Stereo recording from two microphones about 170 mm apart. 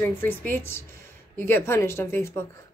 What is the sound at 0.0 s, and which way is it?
A woman's voice, 15° left (ahead or behind).